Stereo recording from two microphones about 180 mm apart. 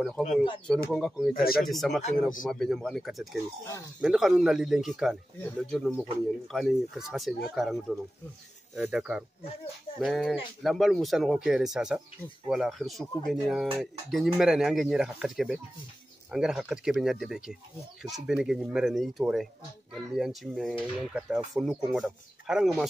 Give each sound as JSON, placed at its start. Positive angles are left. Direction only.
{"t": 0.0, "sound": "speech", "side_deg": 5}
{"t": 1.3, "sound": "speech", "side_deg": 55}
{"t": 1.6, "sound": "speech", "side_deg": 0}
{"t": 5.4, "sound": "speech", "side_deg": 10}
{"t": 5.9, "sound": "speech", "side_deg": 0}